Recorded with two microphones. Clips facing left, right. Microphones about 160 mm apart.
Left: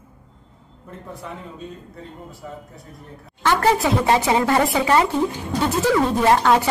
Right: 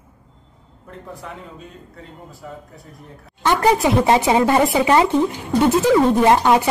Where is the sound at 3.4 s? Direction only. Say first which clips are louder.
Right 2 dB; 15° right (ahead or behind).